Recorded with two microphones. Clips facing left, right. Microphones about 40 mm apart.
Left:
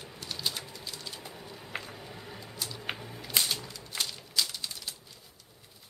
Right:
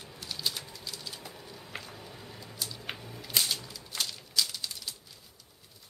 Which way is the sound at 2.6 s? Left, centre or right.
Centre.